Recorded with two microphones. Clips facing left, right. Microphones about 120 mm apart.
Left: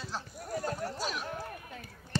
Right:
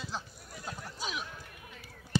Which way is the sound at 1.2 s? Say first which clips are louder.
Left 7 dB; 50° left (ahead or behind).